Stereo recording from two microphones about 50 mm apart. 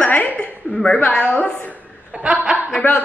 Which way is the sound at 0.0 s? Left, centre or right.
Left.